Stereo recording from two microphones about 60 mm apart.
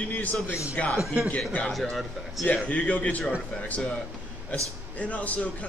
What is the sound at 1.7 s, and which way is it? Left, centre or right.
Speech, centre.